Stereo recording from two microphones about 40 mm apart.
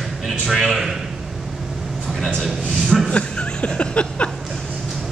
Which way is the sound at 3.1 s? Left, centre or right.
Left.